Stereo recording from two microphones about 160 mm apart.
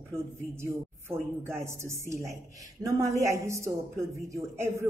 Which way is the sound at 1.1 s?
15° right (ahead or behind).